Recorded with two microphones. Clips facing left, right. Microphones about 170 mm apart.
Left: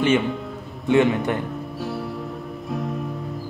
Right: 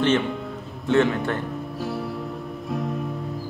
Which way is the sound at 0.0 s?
5° left (ahead or behind).